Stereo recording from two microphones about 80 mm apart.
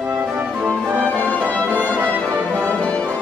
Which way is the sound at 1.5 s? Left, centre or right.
Centre.